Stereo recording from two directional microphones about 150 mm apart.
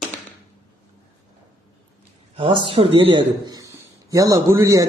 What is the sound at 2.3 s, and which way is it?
A man's voice, 40° right (ahead or behind).